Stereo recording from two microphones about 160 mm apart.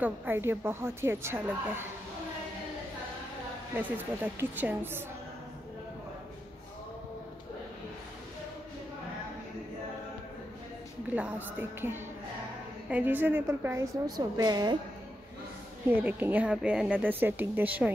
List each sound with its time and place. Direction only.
0.0 s a woman's voice: 10° right (ahead or behind)
3.7 s a woman's voice: 10° right (ahead or behind)
11.1 s a woman's voice: 10° right (ahead or behind)
15.9 s a woman's voice: 10° right (ahead or behind)